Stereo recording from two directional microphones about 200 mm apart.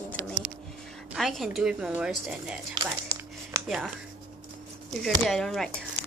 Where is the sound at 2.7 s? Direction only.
20° right (ahead or behind).